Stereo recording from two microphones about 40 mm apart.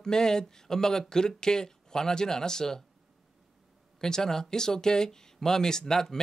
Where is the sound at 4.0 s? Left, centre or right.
Centre.